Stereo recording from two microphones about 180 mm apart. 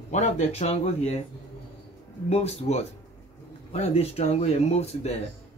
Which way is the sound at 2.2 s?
35° left (ahead or behind).